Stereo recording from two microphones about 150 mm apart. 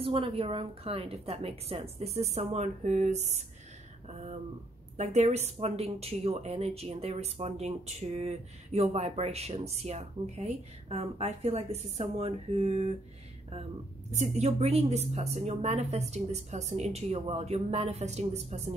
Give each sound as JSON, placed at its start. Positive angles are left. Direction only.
{"t": 0.0, "sound": "speech", "side_deg": -40}
{"t": 14.1, "sound": "speech", "side_deg": -50}